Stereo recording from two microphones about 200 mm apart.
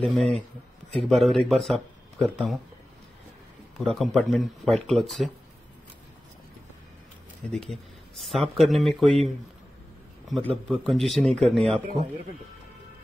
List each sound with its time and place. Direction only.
0.0 s speech: centre (ahead or behind)
3.7 s speech: centre (ahead or behind)
7.5 s speech: centre (ahead or behind)
10.3 s speech: centre (ahead or behind)